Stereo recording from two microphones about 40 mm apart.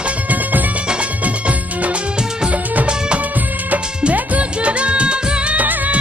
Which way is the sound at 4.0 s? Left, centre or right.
Right.